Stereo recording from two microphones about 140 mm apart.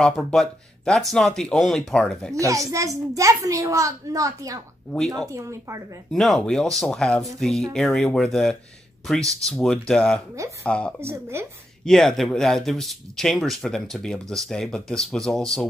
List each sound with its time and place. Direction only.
0.0 s speech: 5° left (ahead or behind)
2.3 s a woman's voice: 25° right (ahead or behind)
6.1 s speech: centre (ahead or behind)
11.0 s a woman's voice: 20° right (ahead or behind)
11.8 s speech: 5° left (ahead or behind)